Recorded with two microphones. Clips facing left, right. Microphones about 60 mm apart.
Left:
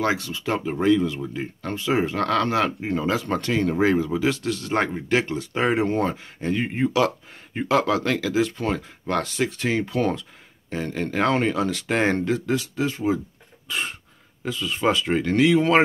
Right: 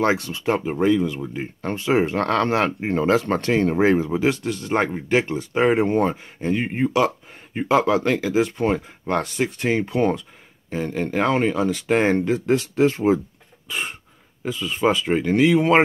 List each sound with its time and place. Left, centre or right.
0.0 s speech: right
0.7 s speech: centre
1.6 s speech: right; by 12.4 s centre
12.4 s speech: right
13.7 s cough: centre
14.4 s speech: centre